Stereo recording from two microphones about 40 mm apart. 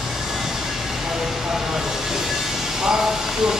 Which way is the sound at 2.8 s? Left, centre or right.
Centre.